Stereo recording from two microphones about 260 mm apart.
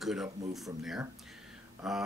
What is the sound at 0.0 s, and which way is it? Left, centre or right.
Speech, centre.